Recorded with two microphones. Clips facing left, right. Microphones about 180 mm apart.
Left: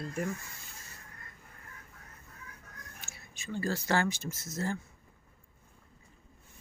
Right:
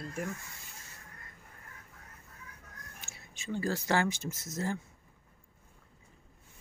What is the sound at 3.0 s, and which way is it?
Speech, 20° right (ahead or behind).